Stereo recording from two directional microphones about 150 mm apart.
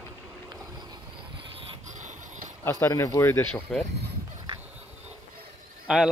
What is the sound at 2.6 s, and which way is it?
Speech, 20° left (ahead or behind).